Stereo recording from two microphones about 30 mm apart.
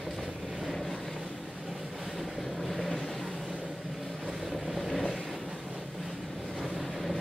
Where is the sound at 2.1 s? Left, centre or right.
Centre.